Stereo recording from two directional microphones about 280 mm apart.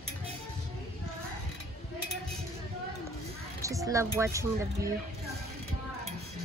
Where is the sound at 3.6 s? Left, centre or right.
Centre.